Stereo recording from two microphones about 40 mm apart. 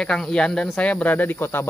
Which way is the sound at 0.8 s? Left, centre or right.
Left.